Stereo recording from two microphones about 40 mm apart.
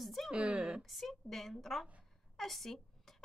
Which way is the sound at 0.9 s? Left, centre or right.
Centre.